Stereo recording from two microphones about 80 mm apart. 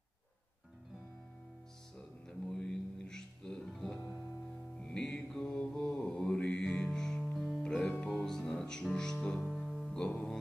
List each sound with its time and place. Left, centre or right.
2.0 s music: centre
5.5 s mantra: centre
5.9 s mantra: centre
6.2 s music: centre